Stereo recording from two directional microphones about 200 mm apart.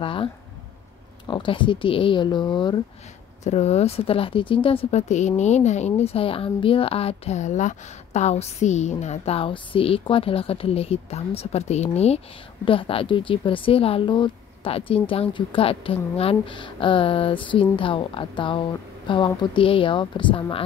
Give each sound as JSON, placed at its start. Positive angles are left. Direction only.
{"t": 0.0, "sound": "a woman's voice", "side_deg": 25}
{"t": 3.4, "sound": "a woman's voice", "side_deg": 30}